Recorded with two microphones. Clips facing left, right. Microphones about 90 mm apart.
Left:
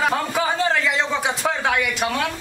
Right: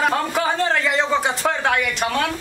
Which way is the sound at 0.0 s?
Centre (ahead or behind).